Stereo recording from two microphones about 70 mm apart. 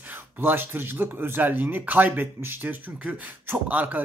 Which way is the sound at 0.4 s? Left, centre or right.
Right.